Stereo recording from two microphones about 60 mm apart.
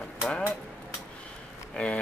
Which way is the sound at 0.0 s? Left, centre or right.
Centre.